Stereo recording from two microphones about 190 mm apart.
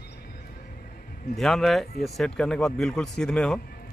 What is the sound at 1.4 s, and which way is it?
Speech, centre (ahead or behind).